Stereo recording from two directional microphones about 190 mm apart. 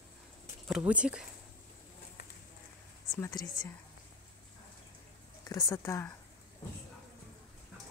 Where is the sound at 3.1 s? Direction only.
15° left (ahead or behind).